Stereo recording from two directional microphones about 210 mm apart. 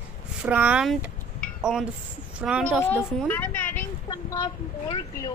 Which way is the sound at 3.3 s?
10° left (ahead or behind).